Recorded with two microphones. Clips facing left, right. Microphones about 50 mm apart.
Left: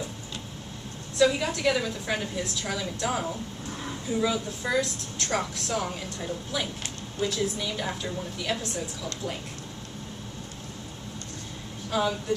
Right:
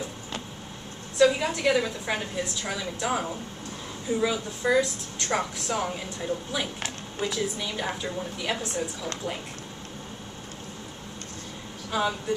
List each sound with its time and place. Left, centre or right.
1.1 s a woman's voice: centre
11.9 s a woman's voice: centre